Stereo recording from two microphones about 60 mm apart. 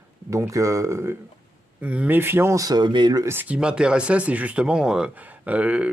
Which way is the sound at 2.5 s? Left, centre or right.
Right.